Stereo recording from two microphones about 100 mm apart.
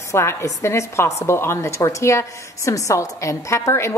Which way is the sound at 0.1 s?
25° left (ahead or behind).